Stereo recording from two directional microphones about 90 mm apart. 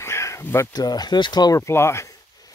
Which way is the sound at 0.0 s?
30° left (ahead or behind).